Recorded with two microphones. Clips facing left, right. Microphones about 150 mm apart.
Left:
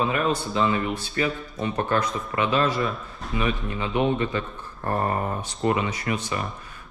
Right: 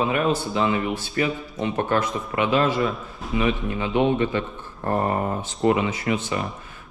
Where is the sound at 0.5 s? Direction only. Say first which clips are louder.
Right 1 dB; 20° right (ahead or behind).